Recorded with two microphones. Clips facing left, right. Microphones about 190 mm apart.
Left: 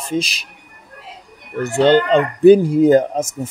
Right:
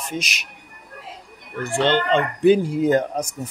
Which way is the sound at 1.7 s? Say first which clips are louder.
Left 6 dB; 40° left (ahead or behind).